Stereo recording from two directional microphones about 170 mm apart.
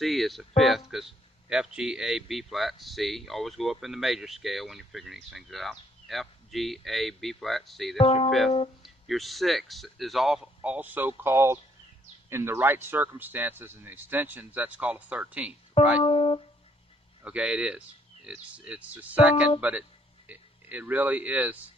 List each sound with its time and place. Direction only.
0.0 s a man's voice: centre (ahead or behind)
8.0 s speech: 35° left (ahead or behind)
8.3 s a man's voice: centre (ahead or behind)
16.0 s speech: 35° left (ahead or behind)
17.2 s speech: 5° right (ahead or behind)